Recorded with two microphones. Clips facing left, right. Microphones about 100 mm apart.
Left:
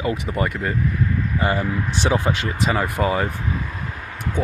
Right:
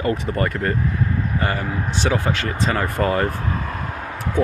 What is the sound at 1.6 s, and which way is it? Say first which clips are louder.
Speech: left 2 dB; 35° right (ahead or behind).